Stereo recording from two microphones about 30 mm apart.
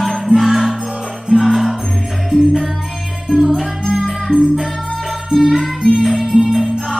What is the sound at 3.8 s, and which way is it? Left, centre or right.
Music, centre.